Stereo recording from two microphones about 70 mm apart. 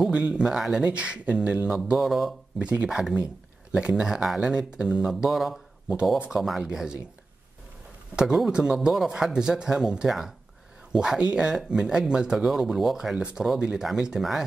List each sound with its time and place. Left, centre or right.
0.0 s speech: centre
2.0 s speech: centre
2.6 s speech: centre
6.1 s speech: centre
6.4 s speech: centre
8.2 s speech: centre
13.2 s speech: centre